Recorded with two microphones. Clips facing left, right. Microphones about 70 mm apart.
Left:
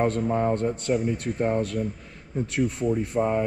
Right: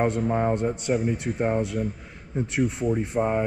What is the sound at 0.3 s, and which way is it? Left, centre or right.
A man's voice, centre.